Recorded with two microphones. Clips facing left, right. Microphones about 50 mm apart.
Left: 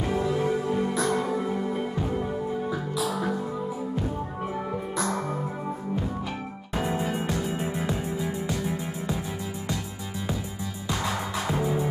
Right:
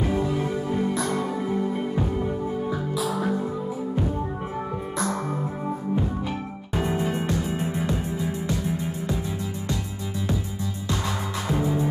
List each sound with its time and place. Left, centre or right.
0.0 s music: centre
2.7 s music: centre
4.9 s music: centre
6.7 s music: centre
10.9 s music: centre